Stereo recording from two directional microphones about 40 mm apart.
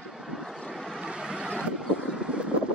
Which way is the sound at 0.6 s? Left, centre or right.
Centre.